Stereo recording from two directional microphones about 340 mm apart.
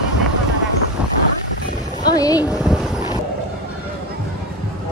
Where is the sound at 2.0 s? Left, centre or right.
Centre.